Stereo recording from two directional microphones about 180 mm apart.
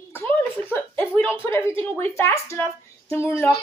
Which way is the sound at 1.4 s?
15° left (ahead or behind).